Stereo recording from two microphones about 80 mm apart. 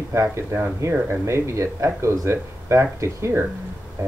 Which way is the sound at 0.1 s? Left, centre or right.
Right.